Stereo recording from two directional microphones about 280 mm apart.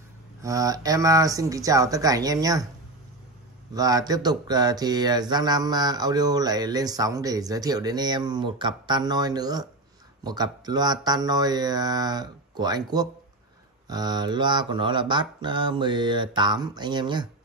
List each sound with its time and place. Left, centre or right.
0.4 s speech: centre
3.7 s speech: centre